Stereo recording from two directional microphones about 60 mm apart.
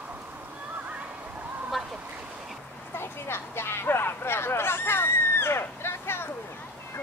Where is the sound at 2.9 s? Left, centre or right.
Left.